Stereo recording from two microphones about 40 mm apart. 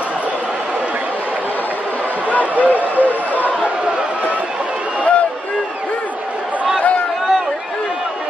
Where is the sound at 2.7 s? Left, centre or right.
Left.